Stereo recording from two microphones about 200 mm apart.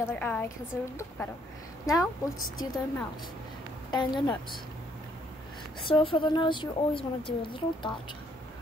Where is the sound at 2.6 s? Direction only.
20° left (ahead or behind).